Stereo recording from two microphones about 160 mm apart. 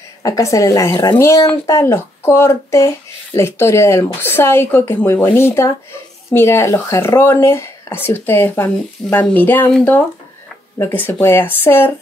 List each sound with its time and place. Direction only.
0.2 s a woman's voice: 20° left (ahead or behind)